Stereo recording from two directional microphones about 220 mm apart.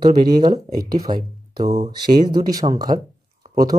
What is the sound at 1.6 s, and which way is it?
Speech, 30° right (ahead or behind).